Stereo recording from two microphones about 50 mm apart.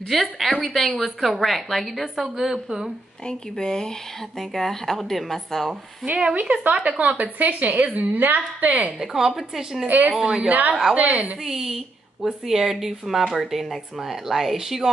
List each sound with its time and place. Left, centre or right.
0.1 s a woman's voice: centre
3.3 s a woman's voice: centre
6.7 s a woman's voice: right
9.0 s speech: centre
9.8 s a woman's voice: right
10.1 s speech: centre
10.5 s a woman's voice: right
11.4 s a woman's voice: centre